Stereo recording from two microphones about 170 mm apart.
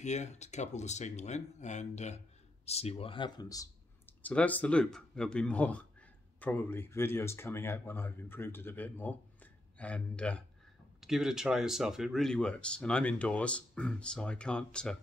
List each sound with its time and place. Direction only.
0.0 s speech: 45° left (ahead or behind); by 4.1 s 20° left (ahead or behind)
4.2 s speech: 10° left (ahead or behind)